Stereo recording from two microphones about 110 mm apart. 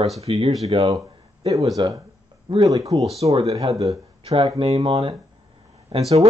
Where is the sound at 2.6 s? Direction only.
30° right (ahead or behind).